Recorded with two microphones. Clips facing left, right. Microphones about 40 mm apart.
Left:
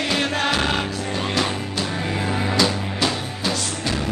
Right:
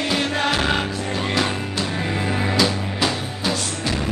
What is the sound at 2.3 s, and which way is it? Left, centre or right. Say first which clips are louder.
Music: even; centre.